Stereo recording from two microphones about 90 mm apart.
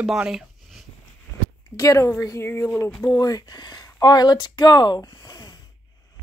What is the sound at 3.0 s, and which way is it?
Speech, 40° left (ahead or behind).